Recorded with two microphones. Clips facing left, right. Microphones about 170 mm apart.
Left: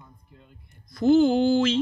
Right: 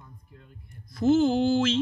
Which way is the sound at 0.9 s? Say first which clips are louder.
Left 3 dB; centre (ahead or behind).